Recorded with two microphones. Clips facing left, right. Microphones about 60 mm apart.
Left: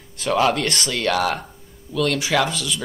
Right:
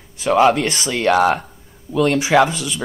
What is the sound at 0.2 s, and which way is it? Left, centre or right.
Speech, centre.